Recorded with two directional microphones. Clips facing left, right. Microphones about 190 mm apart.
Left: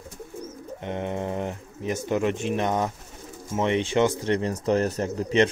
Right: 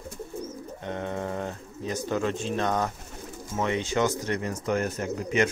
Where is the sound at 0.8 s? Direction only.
20° left (ahead or behind).